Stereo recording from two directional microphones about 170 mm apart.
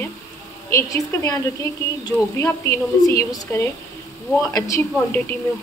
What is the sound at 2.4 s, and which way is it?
A man's voice, 15° left (ahead or behind).